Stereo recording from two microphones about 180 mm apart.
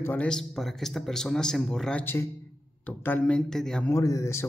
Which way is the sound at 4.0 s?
15° left (ahead or behind).